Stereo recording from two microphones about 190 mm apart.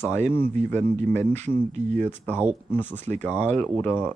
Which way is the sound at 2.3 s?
10° right (ahead or behind).